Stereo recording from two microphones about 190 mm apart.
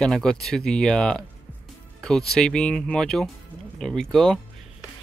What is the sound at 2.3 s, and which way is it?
Speech, 5° left (ahead or behind).